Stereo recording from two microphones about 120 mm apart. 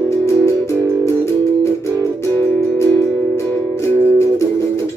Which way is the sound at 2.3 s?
20° left (ahead or behind).